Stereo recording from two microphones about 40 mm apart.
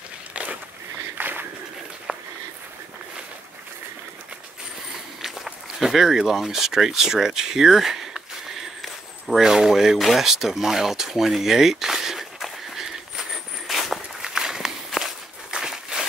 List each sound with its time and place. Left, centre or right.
0.3 s walk: right
1.1 s walk: right
2.1 s a sound: right
5.2 s speech: centre
9.4 s speech: centre
13.7 s walk: centre
15.5 s a sound: centre